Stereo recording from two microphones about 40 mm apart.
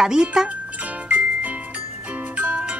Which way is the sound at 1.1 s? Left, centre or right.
Right.